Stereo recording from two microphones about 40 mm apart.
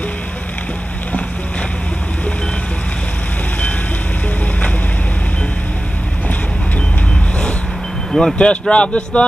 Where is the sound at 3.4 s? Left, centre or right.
Left.